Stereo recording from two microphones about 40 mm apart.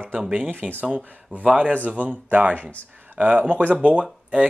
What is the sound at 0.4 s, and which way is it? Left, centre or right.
Speech, right.